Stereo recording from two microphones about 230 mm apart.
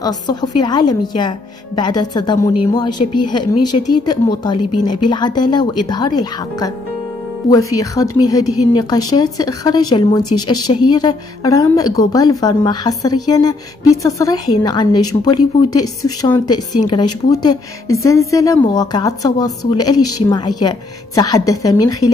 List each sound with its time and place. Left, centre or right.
0.0 s speech: centre
2.9 s speech: left
3.9 s speech: centre